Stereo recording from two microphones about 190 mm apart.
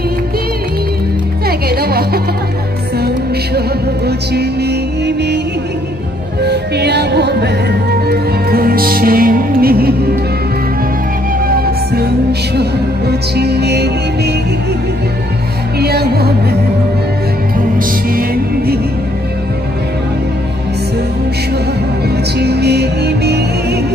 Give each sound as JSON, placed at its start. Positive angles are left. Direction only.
{"t": 1.8, "sound": "music", "side_deg": -55}
{"t": 4.3, "sound": "music", "side_deg": -60}
{"t": 6.4, "sound": "music", "side_deg": -60}
{"t": 11.4, "sound": "music", "side_deg": -50}
{"t": 15.8, "sound": "music", "side_deg": -55}
{"t": 18.1, "sound": "music", "side_deg": -55}
{"t": 22.4, "sound": "music", "side_deg": -60}